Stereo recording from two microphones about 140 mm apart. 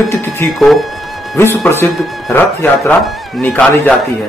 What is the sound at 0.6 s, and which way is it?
Speech, centre (ahead or behind).